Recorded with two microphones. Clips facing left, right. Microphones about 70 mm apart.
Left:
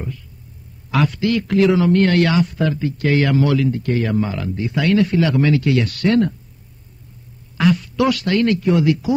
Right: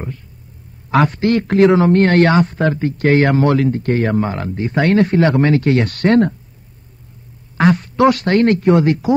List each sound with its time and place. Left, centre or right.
0.9 s a man's voice: right
7.5 s a man's voice: right